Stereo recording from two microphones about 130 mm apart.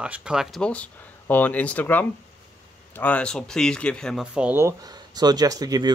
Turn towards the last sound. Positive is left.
turn(degrees=-30)  # may be behind; listen again after turning